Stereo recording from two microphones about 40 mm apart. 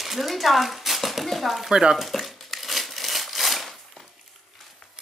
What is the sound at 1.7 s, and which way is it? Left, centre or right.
Speech, centre.